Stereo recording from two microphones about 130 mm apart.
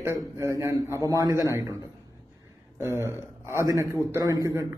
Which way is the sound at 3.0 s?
20° right (ahead or behind).